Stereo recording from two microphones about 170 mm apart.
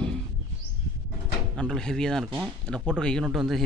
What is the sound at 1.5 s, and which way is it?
Speech, 5° left (ahead or behind).